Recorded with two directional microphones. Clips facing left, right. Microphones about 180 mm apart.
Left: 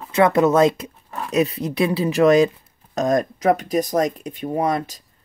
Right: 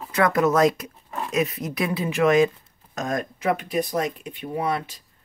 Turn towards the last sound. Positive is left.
turn(degrees=40)  # may be behind; listen again after turning